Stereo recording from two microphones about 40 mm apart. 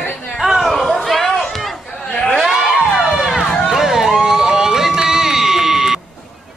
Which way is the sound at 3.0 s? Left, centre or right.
Centre.